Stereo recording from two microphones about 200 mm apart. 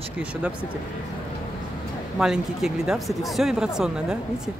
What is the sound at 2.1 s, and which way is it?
Speech, 5° right (ahead or behind).